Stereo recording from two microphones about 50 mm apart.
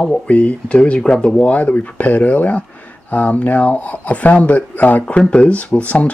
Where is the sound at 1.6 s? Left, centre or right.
Left.